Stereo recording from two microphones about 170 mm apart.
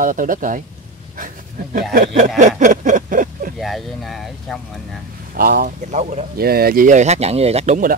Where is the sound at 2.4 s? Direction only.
45° right (ahead or behind).